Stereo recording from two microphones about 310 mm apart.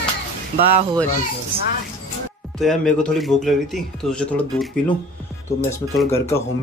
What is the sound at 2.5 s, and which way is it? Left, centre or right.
Speech, centre.